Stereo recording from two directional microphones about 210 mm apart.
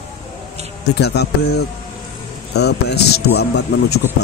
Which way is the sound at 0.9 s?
50° left (ahead or behind).